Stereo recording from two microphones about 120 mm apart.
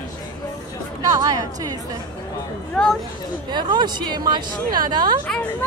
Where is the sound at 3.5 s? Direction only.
35° right (ahead or behind).